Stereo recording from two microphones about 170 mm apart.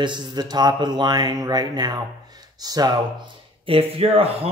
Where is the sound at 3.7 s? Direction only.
35° right (ahead or behind).